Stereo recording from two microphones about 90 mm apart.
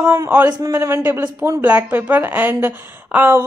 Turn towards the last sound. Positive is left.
turn(degrees=-20)  # may be behind; listen again after turning